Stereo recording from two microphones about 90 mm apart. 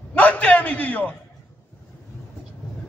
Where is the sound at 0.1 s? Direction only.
15° left (ahead or behind).